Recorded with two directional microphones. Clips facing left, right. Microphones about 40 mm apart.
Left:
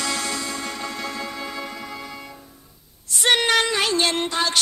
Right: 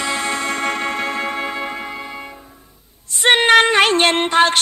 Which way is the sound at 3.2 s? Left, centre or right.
Right.